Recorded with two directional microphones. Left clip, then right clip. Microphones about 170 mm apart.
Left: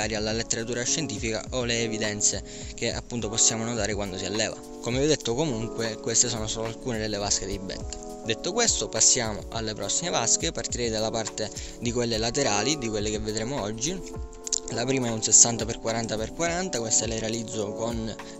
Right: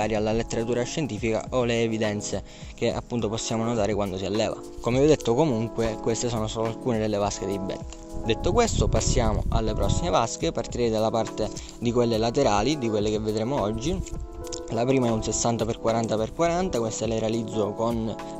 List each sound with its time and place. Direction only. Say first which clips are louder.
0.0 s speech: right 3 dB; 45° right (ahead or behind)